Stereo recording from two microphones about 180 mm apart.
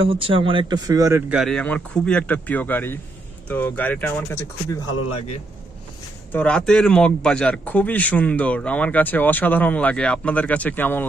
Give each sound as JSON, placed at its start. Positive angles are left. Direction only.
{"t": 0.0, "sound": "speech", "side_deg": -30}
{"t": 1.3, "sound": "a man's voice", "side_deg": 0}
{"t": 6.3, "sound": "a man's voice", "side_deg": 5}